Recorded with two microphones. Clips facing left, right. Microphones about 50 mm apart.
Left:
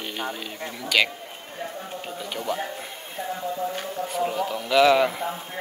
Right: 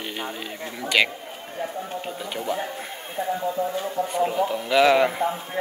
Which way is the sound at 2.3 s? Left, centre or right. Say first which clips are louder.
Right 1 dB; centre.